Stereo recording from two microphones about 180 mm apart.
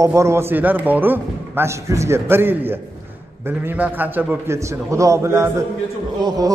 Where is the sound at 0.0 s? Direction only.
15° right (ahead or behind).